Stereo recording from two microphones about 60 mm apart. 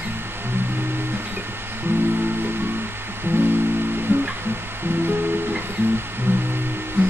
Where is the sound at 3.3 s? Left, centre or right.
Right.